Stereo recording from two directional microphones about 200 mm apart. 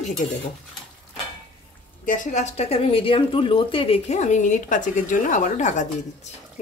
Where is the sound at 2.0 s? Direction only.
40° left (ahead or behind).